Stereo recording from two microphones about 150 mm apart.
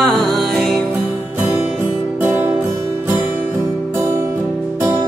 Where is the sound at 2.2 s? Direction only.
10° right (ahead or behind).